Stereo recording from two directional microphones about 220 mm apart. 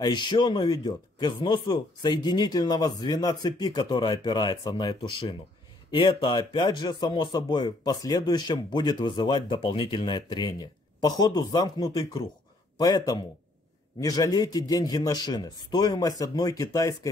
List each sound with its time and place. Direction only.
0.0 s speech: 20° left (ahead or behind)